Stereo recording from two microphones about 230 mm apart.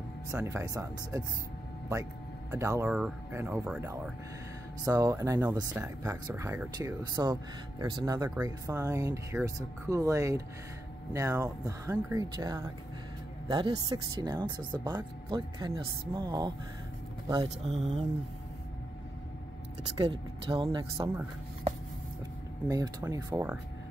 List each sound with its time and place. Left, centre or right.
0.3 s speech: centre
2.5 s speech: centre
4.8 s speech: centre
20.0 s speech: right
22.7 s speech: centre